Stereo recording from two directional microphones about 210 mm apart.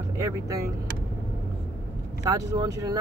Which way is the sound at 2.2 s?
15° right (ahead or behind).